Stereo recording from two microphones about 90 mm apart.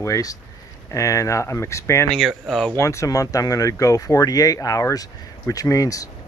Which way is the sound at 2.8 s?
35° left (ahead or behind).